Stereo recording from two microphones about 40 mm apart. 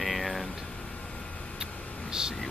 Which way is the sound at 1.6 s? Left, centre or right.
Centre.